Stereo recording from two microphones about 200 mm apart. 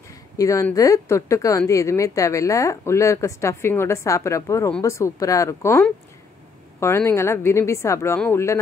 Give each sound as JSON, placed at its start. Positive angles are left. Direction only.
{"t": 0.4, "sound": "speech", "side_deg": 15}